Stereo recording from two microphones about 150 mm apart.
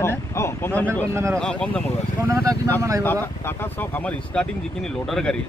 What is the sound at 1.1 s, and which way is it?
Speech, 20° right (ahead or behind).